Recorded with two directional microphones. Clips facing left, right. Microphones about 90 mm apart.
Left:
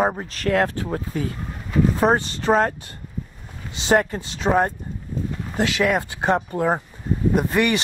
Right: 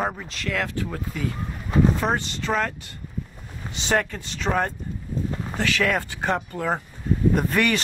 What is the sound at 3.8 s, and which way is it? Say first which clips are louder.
Speech: left 5 dB; 30° left (ahead or behind).